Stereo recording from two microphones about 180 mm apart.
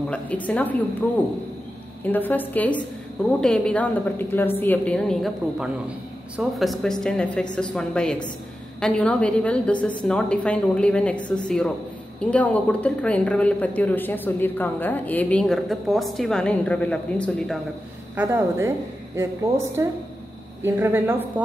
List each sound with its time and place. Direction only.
0.1 s a woman's voice: 5° left (ahead or behind)
2.0 s a woman's voice: 10° left (ahead or behind)
18.1 s speech: 10° right (ahead or behind)
20.6 s speech: 15° right (ahead or behind)